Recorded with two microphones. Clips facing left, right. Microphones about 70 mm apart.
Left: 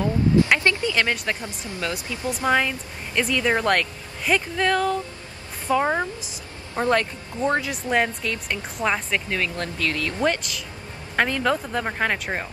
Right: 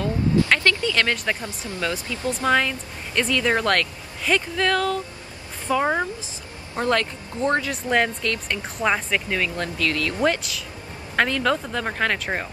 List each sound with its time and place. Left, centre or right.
0.0 s vehicle: centre
1.8 s speech: centre
9.8 s speech: centre
10.2 s speech: centre
11.1 s speech: centre